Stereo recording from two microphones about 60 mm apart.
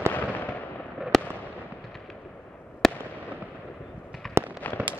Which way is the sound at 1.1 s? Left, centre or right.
Centre.